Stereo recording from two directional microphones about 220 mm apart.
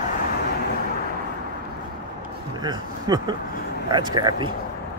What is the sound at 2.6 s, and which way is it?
Speech, 20° right (ahead or behind).